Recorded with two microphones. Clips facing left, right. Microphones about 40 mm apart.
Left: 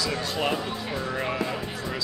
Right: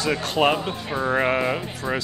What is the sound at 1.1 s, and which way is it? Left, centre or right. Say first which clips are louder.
Speech: right 9 dB; right.